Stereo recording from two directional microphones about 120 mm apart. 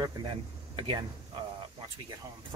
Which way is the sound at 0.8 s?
45° right (ahead or behind).